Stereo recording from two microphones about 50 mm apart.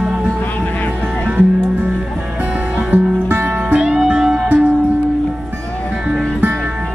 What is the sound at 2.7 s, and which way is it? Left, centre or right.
Music, right.